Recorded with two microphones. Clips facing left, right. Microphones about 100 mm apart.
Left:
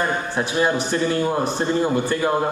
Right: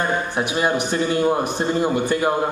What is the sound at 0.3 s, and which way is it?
A man's voice, 15° right (ahead or behind).